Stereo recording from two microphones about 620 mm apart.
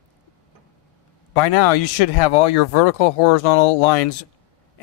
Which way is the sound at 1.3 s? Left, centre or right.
Left.